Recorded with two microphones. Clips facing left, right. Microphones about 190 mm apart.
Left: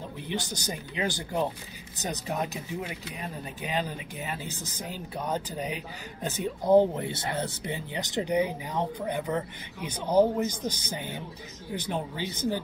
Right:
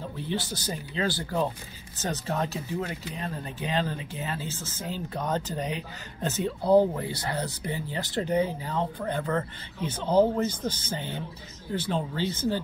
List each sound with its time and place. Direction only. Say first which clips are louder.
0.2 s speech: right 2 dB; 15° left (ahead or behind)